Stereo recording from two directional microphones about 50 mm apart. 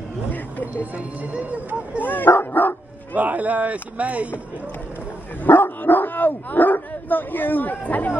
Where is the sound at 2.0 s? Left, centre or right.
Left.